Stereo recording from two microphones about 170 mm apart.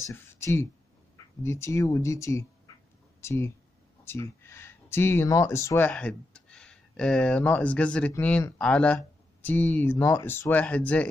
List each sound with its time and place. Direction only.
0.1 s speech: 15° left (ahead or behind)